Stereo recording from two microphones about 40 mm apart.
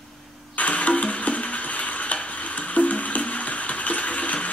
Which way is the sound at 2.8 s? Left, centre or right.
Left.